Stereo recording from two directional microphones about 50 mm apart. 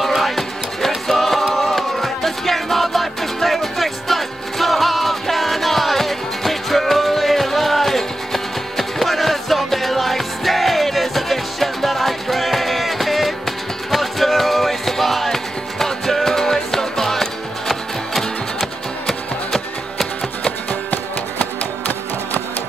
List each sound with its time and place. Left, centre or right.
0.0 s music: centre
20.9 s music: left